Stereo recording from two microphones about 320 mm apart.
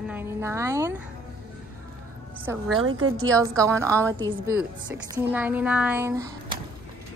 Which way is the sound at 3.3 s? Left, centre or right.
Centre.